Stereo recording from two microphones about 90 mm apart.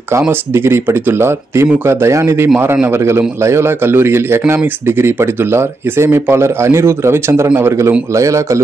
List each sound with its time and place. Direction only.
0.3 s a man's voice: 25° right (ahead or behind)